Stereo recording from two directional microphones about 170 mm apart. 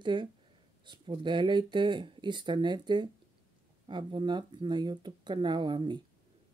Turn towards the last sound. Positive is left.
turn(degrees=-25)  # may be behind; listen again after turning